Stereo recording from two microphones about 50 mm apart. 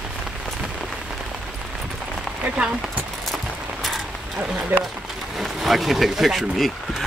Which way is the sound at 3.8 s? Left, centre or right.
Centre.